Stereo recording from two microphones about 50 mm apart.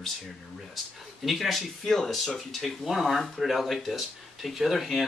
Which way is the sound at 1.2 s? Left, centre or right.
Centre.